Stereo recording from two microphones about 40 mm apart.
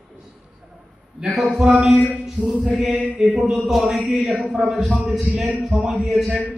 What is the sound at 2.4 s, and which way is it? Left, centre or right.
Mantra, right.